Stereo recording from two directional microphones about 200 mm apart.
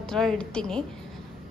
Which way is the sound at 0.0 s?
Centre (ahead or behind).